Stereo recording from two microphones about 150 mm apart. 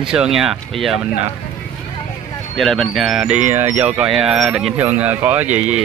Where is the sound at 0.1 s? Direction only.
5° right (ahead or behind).